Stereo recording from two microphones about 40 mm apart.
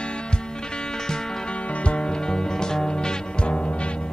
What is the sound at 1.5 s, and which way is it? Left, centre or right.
Music, left.